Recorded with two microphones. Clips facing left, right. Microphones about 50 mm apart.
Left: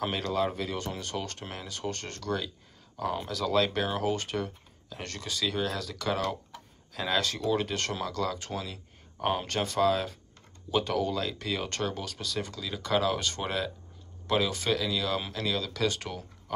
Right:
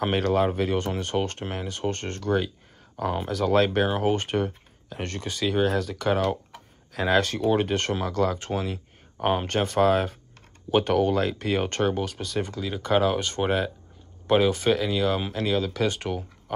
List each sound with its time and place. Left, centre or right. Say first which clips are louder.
0.2 s speech: right 7 dB; right